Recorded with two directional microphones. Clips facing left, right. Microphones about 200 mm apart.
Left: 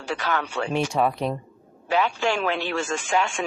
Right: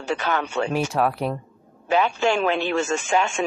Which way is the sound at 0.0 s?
25° right (ahead or behind).